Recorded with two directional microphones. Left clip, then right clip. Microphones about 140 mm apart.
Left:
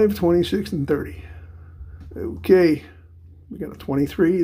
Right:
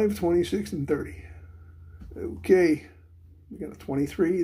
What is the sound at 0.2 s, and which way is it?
Speech, 55° left (ahead or behind).